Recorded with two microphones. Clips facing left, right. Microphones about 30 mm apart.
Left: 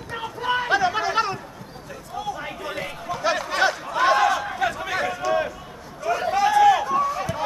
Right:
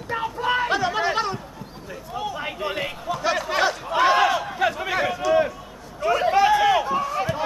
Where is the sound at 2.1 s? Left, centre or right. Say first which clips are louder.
Right 1 dB; right.